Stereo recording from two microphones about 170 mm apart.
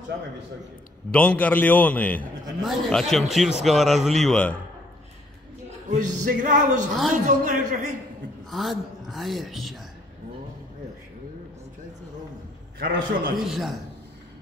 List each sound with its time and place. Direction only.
1.1 s a man's voice: 5° left (ahead or behind)
5.9 s music: 45° right (ahead or behind)
8.5 s a woman's voice: centre (ahead or behind)
12.7 s a man's voice: 60° right (ahead or behind)
13.4 s a woman's voice: centre (ahead or behind)